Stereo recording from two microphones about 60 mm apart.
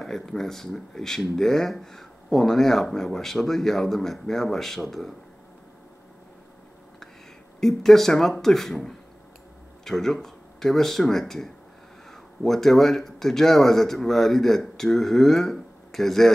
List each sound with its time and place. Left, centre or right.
0.0 s speech: centre
7.6 s speech: centre